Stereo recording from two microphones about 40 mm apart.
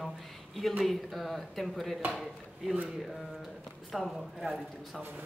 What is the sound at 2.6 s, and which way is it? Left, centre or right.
Speech, centre.